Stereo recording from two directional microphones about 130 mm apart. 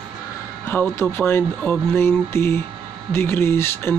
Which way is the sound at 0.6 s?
15° left (ahead or behind).